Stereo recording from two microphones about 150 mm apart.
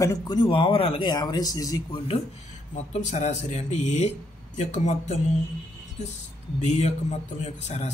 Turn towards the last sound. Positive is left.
turn(degrees=50)  # may be behind; listen again after turning